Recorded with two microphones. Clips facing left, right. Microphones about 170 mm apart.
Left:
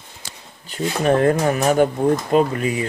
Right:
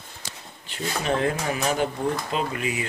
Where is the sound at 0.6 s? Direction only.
45° left (ahead or behind).